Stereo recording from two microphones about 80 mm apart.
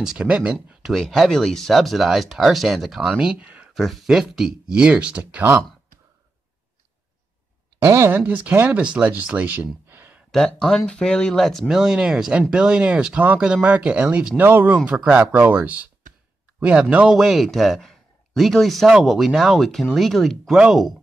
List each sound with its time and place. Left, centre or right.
0.0 s speech: centre
0.8 s a man's voice: centre
3.7 s a man's voice: centre
7.8 s speech: right
8.2 s speech: right
9.8 s a sound: right
10.3 s a man's voice: centre